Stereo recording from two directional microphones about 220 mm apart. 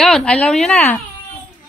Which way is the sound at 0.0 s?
5° left (ahead or behind).